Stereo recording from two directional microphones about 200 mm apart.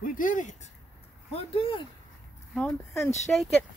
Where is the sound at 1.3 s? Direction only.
30° left (ahead or behind).